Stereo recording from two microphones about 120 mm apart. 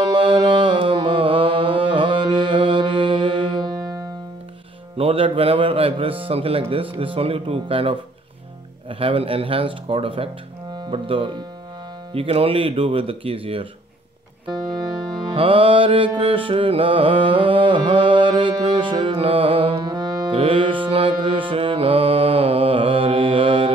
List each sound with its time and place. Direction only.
0.1 s music: 45° right (ahead or behind)
4.9 s a man's voice: 50° right (ahead or behind)
14.5 s music: 35° right (ahead or behind)